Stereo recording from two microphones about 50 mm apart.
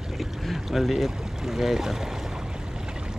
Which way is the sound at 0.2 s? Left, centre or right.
Centre.